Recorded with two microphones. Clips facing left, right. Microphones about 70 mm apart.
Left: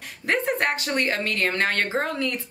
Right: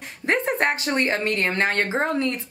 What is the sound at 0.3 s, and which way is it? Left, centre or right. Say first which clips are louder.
A woman's voice: right 2 dB; right.